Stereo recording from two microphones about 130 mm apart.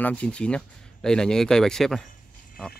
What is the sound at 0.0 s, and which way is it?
Speech, 10° left (ahead or behind).